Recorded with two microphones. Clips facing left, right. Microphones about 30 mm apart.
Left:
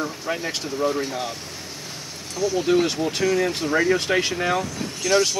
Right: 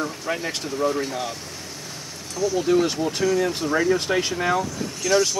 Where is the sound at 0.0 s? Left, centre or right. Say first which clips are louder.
Even; centre.